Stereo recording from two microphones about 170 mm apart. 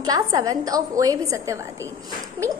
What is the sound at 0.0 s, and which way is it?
A woman's voice, 20° right (ahead or behind).